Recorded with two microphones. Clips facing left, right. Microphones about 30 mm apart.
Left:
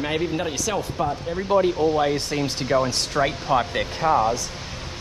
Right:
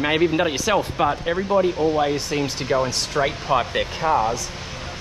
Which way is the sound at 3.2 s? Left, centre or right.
Centre.